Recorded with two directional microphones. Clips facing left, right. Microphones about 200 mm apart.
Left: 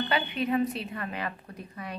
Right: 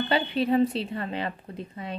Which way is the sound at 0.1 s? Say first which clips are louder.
Right 6 dB; 30° right (ahead or behind).